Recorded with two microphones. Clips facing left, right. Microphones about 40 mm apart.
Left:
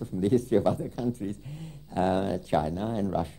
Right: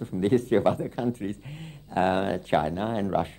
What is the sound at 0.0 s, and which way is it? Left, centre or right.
Speech, right.